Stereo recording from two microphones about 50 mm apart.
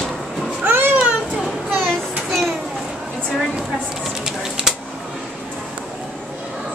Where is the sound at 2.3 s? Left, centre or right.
Centre.